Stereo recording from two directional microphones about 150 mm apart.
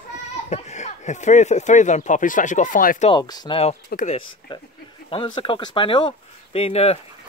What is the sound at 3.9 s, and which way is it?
Speech, 90° left.